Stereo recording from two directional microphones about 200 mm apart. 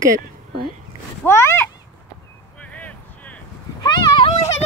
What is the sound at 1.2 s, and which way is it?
Speech, 10° left (ahead or behind).